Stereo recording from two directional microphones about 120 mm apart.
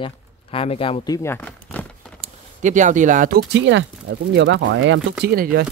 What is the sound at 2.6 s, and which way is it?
Speech, 90° right.